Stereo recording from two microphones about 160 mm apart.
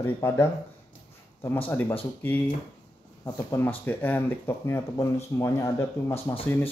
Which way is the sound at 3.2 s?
20° left (ahead or behind).